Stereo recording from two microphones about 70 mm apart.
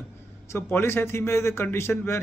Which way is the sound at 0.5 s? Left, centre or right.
Left.